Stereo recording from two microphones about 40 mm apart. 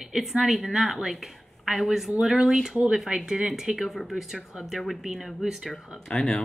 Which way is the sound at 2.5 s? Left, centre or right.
Centre.